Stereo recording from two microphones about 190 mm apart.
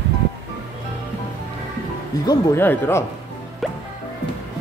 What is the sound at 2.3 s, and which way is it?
Speech, 10° left (ahead or behind).